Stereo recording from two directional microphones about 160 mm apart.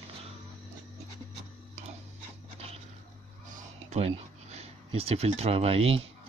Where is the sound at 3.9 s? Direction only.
40° right (ahead or behind).